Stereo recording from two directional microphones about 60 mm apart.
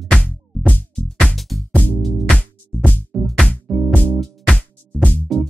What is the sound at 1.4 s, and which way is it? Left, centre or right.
Music, centre.